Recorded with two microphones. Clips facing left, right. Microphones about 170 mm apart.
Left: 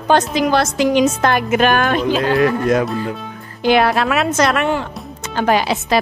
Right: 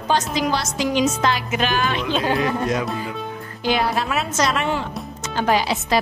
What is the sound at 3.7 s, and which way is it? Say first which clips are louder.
A woman's voice: left 7 dB; 70° left (ahead or behind).